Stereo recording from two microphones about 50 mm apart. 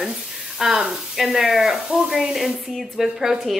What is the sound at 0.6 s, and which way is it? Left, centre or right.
A woman's voice, centre.